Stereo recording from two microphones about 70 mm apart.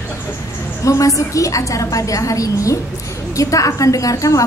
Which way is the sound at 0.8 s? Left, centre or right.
Left.